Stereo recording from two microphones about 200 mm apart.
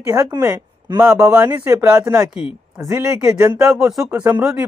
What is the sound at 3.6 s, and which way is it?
Speech, centre (ahead or behind).